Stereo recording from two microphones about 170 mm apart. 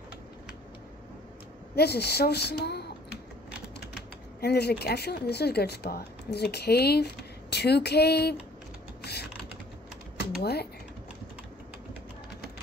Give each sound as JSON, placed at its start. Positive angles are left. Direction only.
{"t": 1.8, "sound": "a woman's voice", "side_deg": 70}
{"t": 9.0, "sound": "typing", "side_deg": 75}
{"t": 10.4, "sound": "speech", "side_deg": 70}